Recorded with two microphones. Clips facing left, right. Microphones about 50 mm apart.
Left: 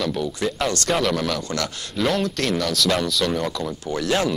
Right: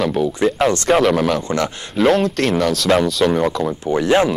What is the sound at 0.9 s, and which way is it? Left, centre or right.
Speech, centre.